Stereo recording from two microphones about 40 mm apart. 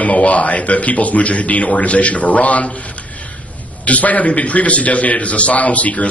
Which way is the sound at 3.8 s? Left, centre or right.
Left.